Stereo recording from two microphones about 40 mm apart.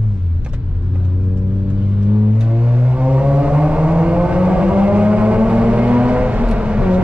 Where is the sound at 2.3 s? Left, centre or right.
Right.